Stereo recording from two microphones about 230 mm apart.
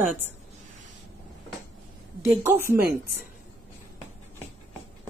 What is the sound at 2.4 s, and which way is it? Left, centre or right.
Speech, centre.